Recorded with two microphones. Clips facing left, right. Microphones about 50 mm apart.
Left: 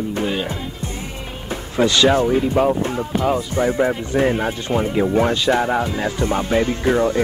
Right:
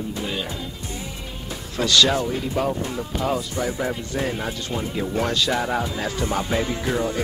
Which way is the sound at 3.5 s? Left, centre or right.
Left.